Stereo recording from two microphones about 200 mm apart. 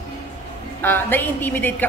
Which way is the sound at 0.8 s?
10° left (ahead or behind).